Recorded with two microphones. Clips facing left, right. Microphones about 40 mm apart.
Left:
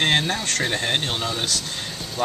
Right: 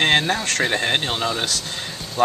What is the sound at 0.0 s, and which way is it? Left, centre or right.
Speech, centre.